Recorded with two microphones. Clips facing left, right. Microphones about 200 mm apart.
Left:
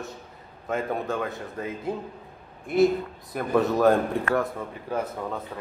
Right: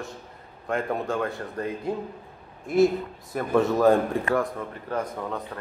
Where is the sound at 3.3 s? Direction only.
Centre (ahead or behind).